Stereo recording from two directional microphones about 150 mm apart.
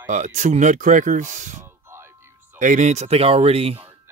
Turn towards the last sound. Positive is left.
turn(degrees=-40)  # may be behind; listen again after turning